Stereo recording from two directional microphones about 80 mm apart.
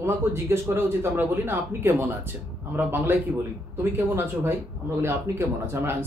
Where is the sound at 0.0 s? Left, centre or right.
Right.